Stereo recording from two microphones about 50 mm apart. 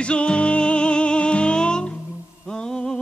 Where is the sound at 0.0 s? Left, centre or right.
Left.